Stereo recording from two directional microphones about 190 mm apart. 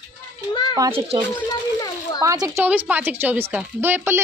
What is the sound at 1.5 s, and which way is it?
Children playing, 20° left (ahead or behind).